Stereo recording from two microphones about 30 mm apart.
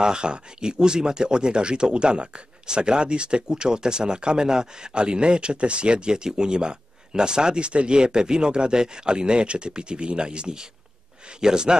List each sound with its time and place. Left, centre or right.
0.0 s speech: right